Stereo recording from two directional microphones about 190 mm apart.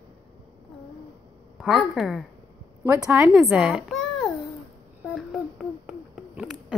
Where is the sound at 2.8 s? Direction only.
15° right (ahead or behind).